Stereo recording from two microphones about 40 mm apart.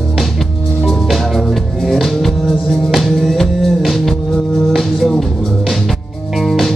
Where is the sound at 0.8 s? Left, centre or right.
Centre.